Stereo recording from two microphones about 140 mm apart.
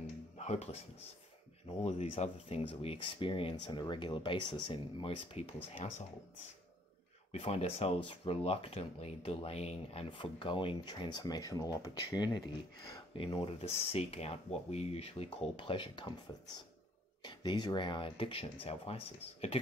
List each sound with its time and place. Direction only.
0.4 s speech: 50° left (ahead or behind)
7.3 s speech: 45° left (ahead or behind); by 12.4 s 30° left (ahead or behind)
13.2 s speech: 40° left (ahead or behind)
17.2 s speech: 35° left (ahead or behind)